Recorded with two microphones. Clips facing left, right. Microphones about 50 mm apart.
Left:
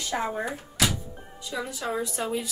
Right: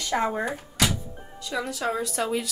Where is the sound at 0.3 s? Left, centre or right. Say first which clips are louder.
Right 2 dB; centre.